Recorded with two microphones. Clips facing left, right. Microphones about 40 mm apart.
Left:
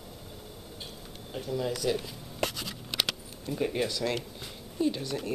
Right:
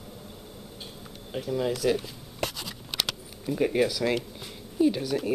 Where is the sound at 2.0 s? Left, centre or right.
Centre.